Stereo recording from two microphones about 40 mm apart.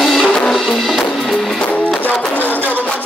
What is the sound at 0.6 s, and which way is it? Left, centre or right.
Drum, centre.